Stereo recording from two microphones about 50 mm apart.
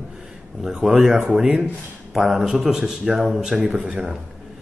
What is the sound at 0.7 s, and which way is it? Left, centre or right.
A man's voice, centre.